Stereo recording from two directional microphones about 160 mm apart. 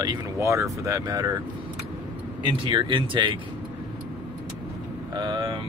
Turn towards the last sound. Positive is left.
turn(degrees=-30)  # may be behind; listen again after turning